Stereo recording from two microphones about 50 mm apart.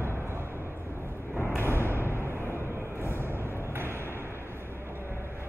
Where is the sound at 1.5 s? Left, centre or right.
Right.